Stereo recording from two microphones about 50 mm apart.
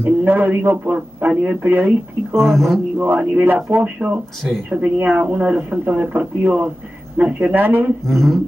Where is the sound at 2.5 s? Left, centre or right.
Centre.